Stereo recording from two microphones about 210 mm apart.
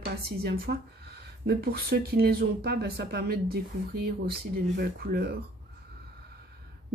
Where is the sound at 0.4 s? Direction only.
50° right (ahead or behind).